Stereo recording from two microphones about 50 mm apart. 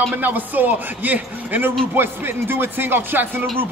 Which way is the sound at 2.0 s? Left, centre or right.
Right.